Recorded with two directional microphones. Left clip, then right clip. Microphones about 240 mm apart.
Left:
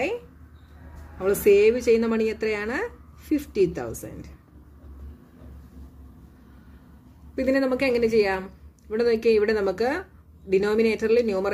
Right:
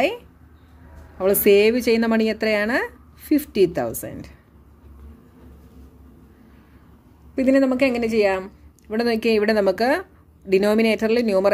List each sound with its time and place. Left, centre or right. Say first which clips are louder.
1.1 s a woman's voice: right 3 dB; right
7.3 s a woman's voice: right 5 dB; right